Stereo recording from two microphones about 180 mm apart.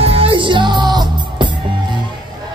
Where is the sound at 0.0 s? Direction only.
30° right (ahead or behind).